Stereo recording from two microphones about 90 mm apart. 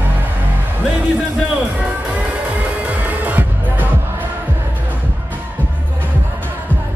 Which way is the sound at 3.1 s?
20° right (ahead or behind).